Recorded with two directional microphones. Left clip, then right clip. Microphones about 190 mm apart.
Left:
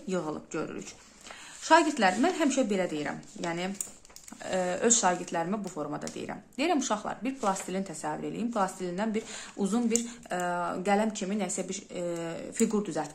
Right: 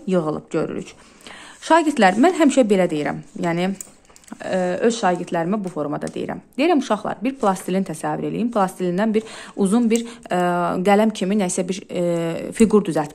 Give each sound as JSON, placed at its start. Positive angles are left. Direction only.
{"t": 0.1, "sound": "speech", "side_deg": -45}
{"t": 4.4, "sound": "speech", "side_deg": -35}